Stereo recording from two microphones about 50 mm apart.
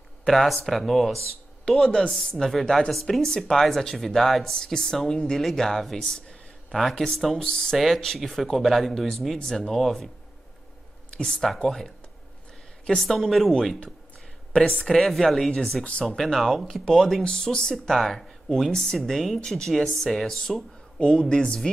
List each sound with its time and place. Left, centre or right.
0.3 s speech: centre
1.7 s speech: centre
7.3 s speech: centre
7.7 s speech: centre
11.1 s speech: left
11.4 s speech: centre
14.9 s speech: centre
15.8 s speech: left
16.2 s speech: centre
16.6 s speech: centre
17.2 s speech: centre